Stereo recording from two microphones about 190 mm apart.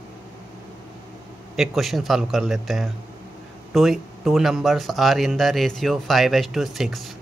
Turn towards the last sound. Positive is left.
turn(degrees=0)  # may be behind; listen again after turning